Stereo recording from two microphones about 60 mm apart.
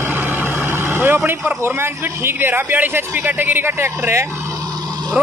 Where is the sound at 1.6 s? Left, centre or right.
Right.